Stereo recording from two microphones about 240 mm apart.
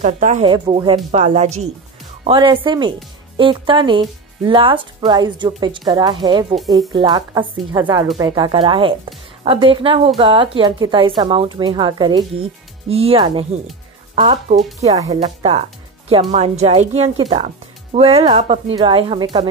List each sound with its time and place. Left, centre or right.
0.0 s speech: right
0.5 s speech: centre